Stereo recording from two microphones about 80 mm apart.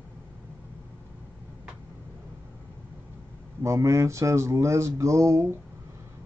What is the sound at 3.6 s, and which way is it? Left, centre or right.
Speech, right.